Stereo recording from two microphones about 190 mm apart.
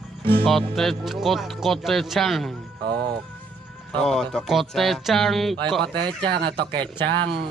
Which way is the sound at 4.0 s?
Centre (ahead or behind).